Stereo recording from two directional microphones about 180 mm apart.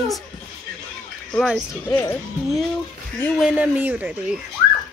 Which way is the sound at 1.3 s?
Centre (ahead or behind).